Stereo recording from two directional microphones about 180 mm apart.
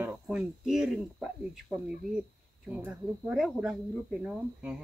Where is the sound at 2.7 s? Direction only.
5° right (ahead or behind).